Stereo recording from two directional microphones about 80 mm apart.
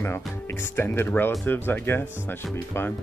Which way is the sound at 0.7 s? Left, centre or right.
Left.